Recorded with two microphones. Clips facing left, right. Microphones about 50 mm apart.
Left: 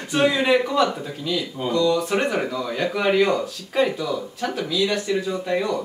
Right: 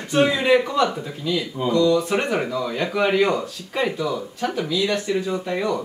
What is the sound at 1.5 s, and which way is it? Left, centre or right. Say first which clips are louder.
Speech: right 2 dB; centre.